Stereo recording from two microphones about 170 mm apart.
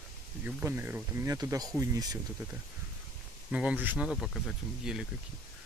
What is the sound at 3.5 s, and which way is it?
Speech, 5° right (ahead or behind).